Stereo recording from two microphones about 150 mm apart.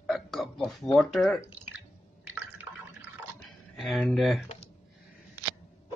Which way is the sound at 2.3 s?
10° right (ahead or behind).